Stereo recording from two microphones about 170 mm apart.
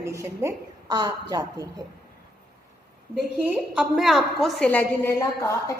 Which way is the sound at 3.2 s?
5° right (ahead or behind).